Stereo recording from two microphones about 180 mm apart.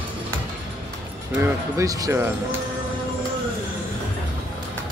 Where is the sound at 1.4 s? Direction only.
20° right (ahead or behind).